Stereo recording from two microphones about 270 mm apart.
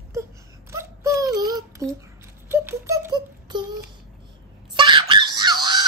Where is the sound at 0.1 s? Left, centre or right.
Centre.